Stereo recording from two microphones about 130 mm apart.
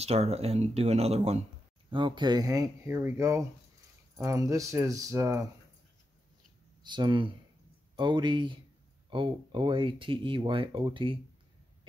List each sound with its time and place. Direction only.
0.0 s speech: 55° right (ahead or behind)
1.9 s speech: 40° right (ahead or behind)
6.8 s speech: 35° right (ahead or behind)